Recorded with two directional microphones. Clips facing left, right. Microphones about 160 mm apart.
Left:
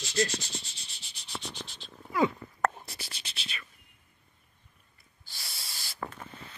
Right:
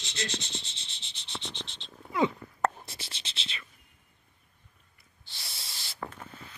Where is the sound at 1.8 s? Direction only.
20° right (ahead or behind).